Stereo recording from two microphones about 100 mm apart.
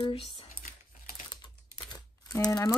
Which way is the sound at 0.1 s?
65° left (ahead or behind).